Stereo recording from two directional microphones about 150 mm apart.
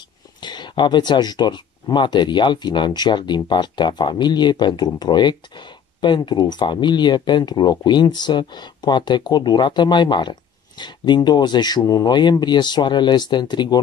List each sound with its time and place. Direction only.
0.4 s speech: 30° left (ahead or behind)